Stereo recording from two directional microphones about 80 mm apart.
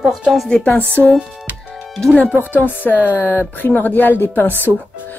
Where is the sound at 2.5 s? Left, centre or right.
Left.